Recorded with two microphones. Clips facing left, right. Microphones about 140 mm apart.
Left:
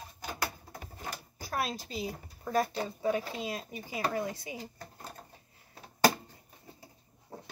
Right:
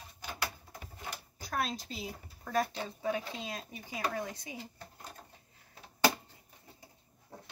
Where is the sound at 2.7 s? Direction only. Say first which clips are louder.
Left 4 dB; 45° left (ahead or behind).